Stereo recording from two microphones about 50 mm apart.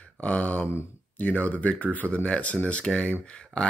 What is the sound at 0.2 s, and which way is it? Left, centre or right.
Speech, left.